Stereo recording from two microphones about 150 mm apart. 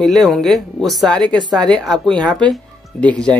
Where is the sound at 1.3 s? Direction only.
30° right (ahead or behind).